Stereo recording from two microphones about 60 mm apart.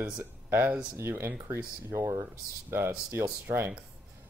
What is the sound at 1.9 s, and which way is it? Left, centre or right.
Speech, right.